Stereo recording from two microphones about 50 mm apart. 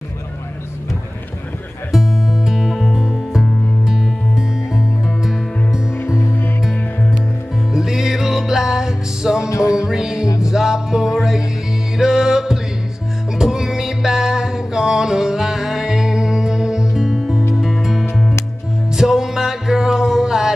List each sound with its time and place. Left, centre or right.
1.9 s music: centre
6.0 s music: left
7.7 s music: centre